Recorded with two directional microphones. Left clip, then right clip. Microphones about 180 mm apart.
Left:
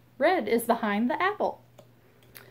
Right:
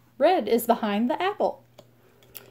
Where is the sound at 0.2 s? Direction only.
40° right (ahead or behind).